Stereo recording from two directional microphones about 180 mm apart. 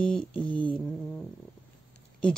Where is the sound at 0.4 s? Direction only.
30° left (ahead or behind).